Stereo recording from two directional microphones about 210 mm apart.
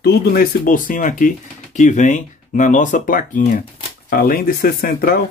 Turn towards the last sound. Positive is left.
turn(degrees=45)  # may be behind; listen again after turning